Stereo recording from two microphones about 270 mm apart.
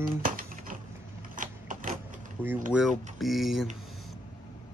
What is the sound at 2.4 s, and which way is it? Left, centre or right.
Speech, centre.